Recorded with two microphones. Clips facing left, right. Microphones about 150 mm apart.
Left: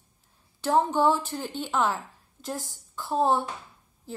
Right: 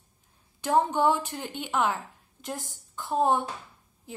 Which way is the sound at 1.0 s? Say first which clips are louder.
Left 1 dB; 15° right (ahead or behind).